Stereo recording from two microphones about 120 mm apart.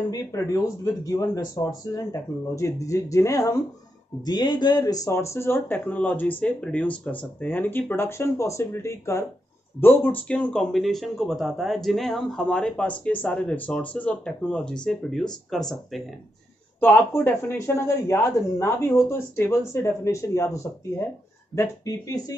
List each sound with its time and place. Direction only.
0.1 s speech: 30° left (ahead or behind); by 16.0 s 5° left (ahead or behind)
16.8 s speech: 15° left (ahead or behind)